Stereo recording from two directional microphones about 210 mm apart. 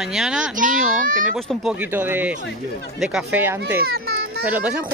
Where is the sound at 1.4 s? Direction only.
Centre (ahead or behind).